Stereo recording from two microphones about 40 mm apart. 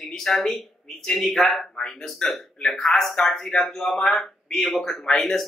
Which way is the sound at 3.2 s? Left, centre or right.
Centre.